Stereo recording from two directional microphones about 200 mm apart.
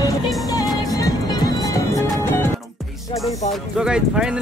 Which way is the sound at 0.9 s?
20° left (ahead or behind).